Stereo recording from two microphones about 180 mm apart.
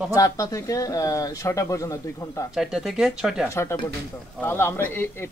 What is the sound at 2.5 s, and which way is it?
Speech, 5° right (ahead or behind).